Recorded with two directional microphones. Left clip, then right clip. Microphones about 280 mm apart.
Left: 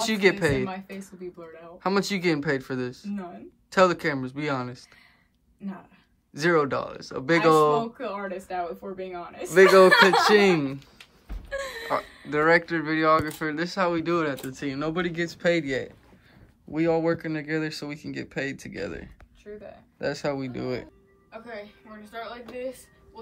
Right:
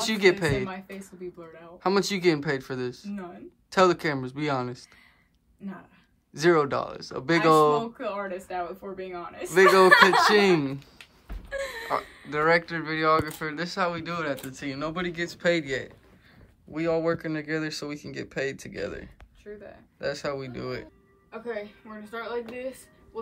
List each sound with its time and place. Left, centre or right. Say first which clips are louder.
0.0 s speech: even; centre
6.3 s speech: even; centre